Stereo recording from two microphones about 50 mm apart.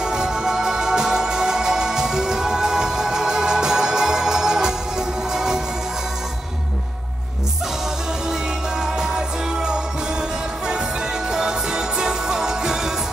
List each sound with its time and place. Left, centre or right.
0.0 s music: centre
8.8 s music: centre
11.2 s music: centre